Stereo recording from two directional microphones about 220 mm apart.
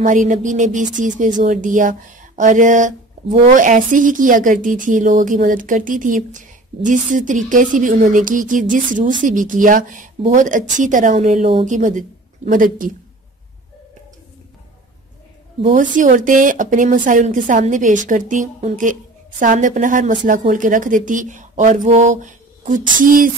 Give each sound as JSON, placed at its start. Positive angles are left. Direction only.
{"t": 0.0, "sound": "speech", "side_deg": -35}
{"t": 15.6, "sound": "speech", "side_deg": -35}